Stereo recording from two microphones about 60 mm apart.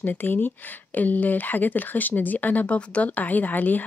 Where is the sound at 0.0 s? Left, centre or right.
Left.